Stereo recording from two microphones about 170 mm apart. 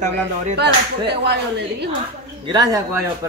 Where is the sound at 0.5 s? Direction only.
80° right.